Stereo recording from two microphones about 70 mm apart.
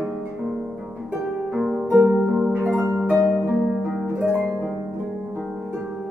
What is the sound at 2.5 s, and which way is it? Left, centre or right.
Harp, right.